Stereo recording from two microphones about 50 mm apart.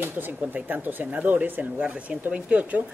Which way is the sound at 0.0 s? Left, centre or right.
Right.